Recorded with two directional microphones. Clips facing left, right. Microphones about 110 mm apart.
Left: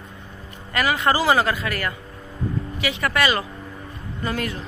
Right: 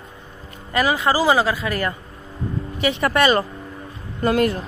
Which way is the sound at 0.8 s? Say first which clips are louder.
Right 2 dB; 20° right (ahead or behind).